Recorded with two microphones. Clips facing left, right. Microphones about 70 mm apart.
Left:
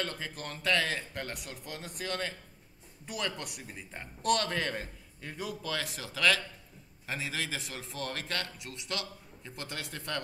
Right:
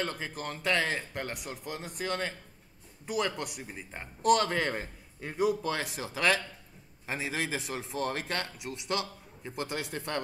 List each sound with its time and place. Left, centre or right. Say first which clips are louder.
0.0 s a man's voice: right 3 dB; centre
3.6 s a man's voice: right 2 dB; centre